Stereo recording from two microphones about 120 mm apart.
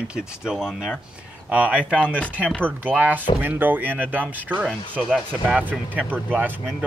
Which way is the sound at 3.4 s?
15° right (ahead or behind).